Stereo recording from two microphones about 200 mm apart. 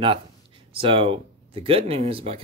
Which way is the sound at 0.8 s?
25° right (ahead or behind).